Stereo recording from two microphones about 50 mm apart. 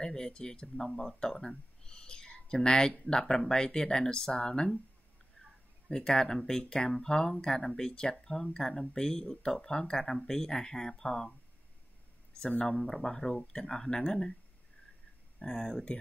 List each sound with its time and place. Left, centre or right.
0.0 s speech: centre
5.9 s speech: centre
12.4 s speech: left
12.7 s speech: centre
15.3 s speech: centre